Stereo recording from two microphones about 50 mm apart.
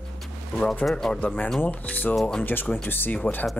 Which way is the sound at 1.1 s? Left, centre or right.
Left.